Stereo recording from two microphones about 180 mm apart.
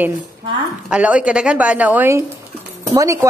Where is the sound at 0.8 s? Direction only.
5° right (ahead or behind).